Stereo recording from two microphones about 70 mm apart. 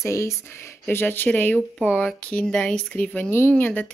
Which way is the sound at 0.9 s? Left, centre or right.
Left.